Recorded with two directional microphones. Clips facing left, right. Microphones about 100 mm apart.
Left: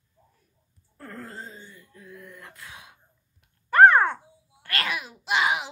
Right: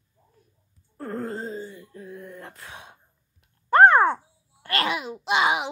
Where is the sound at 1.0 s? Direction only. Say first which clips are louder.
Right 9 dB; 30° right (ahead or behind).